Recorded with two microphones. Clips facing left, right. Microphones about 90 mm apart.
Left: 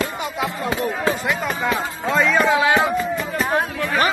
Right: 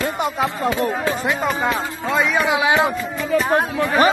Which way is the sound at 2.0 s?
5° right (ahead or behind).